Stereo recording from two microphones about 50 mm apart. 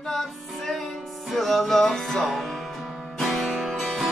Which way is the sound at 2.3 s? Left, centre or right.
Centre.